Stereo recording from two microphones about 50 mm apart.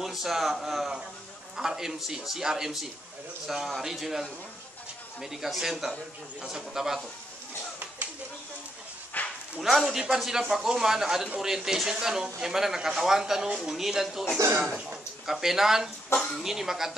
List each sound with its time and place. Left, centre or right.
0.0 s speech: centre
9.1 s dog: left
9.6 s speech: centre
15.2 s speech: centre